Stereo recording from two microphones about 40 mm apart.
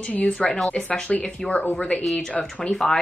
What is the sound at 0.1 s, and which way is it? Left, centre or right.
Speech, left.